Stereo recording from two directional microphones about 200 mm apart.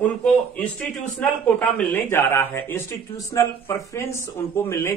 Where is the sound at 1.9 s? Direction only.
10° left (ahead or behind).